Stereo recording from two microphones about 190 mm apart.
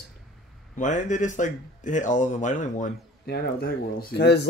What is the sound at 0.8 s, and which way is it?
Speech, 40° left (ahead or behind).